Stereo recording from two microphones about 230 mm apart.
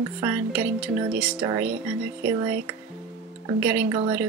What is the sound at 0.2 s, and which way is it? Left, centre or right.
Speech, centre.